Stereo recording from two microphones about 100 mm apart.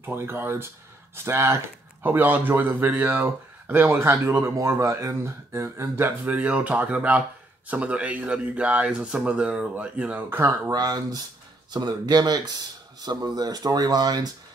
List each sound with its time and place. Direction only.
0.0 s speech: 25° right (ahead or behind)
10.7 s speech: 40° right (ahead or behind)